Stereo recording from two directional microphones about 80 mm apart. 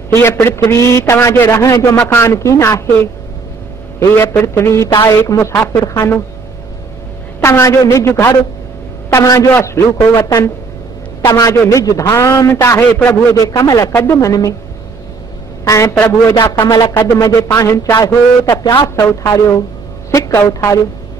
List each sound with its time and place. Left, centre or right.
0.1 s a man's voice: left
4.2 s a man's voice: left
7.4 s a woman's voice: left
9.1 s a man's voice: left
9.5 s a man's voice: left
11.2 s a man's voice: left
13.4 s a man's voice: left
13.9 s a man's voice: left
15.6 s a woman's voice: left
15.9 s a man's voice: left
17.1 s a man's voice: left
18.9 s a man's voice: left